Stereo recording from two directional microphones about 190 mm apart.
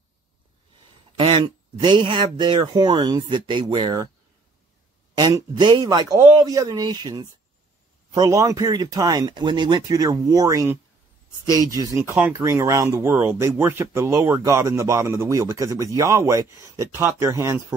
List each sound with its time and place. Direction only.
1.1 s speech: 25° right (ahead or behind)
5.1 s speech: 20° right (ahead or behind)